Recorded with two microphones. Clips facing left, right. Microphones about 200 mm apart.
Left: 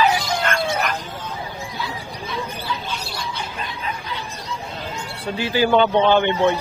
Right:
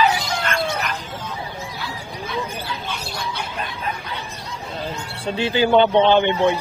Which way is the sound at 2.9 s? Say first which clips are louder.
Right 1 dB; 55° right (ahead or behind).